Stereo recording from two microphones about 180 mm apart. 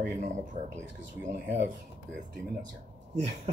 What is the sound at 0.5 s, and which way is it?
Speech, 30° right (ahead or behind).